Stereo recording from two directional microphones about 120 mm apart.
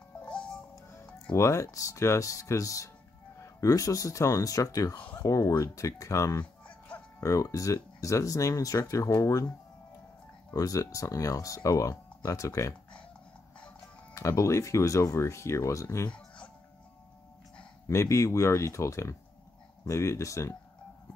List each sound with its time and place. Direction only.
0.3 s music: 10° left (ahead or behind)
1.3 s speech: 25° left (ahead or behind)
10.5 s speech: 30° left (ahead or behind)
14.1 s speech: 25° left (ahead or behind)
17.8 s speech: 25° left (ahead or behind)